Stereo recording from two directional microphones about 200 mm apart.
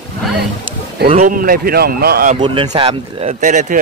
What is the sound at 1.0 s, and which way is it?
A man's voice, 40° right (ahead or behind).